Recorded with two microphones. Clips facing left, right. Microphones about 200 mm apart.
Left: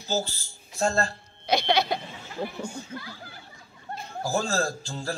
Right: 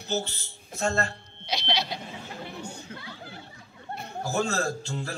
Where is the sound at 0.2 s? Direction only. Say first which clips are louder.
Left 3 dB; 35° left (ahead or behind).